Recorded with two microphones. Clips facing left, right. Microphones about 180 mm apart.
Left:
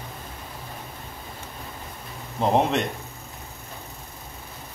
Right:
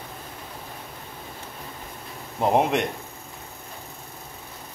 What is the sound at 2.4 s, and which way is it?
Speech, 15° right (ahead or behind).